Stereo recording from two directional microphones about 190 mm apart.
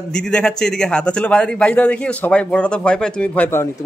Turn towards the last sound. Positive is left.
turn(degrees=10)  # may be behind; listen again after turning